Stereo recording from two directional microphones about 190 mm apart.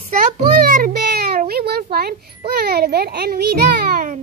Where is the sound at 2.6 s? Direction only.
55° right (ahead or behind).